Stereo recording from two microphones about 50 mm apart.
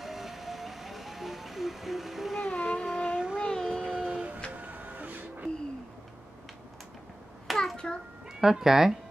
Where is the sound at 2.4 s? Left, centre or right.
Centre.